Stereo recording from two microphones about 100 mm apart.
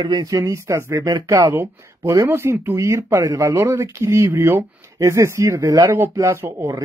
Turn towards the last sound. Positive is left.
turn(degrees=-25)  # may be behind; listen again after turning